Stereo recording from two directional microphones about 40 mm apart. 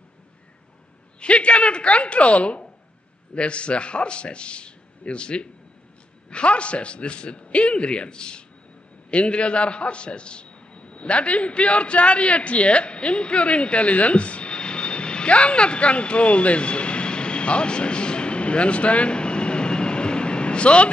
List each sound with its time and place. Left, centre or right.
1.2 s a woman's voice: left